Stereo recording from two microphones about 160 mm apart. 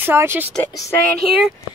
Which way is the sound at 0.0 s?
15° right (ahead or behind).